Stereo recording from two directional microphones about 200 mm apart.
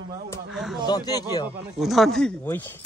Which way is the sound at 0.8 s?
20° left (ahead or behind).